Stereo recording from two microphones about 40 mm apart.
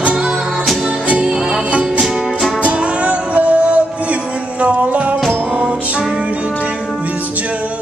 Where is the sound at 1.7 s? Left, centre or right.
Right.